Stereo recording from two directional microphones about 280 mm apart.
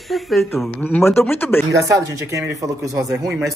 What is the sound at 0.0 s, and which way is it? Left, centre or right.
Speech, centre.